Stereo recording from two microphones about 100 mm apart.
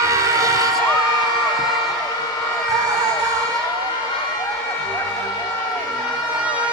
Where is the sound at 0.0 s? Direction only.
30° right (ahead or behind).